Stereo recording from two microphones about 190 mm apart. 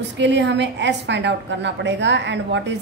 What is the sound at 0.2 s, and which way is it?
A woman's voice, 65° right (ahead or behind).